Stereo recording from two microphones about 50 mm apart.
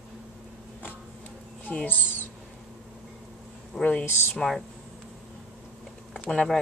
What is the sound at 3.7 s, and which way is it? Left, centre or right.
Speech, left.